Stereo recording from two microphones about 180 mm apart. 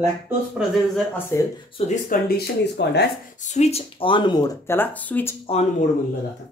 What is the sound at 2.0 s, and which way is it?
Speech, 65° left (ahead or behind).